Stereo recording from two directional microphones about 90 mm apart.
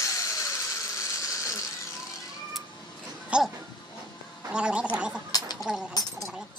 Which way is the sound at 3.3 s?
10° right (ahead or behind).